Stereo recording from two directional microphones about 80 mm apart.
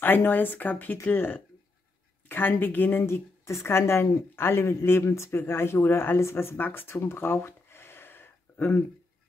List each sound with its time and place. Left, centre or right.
0.0 s speech: left
3.0 s a woman's voice: left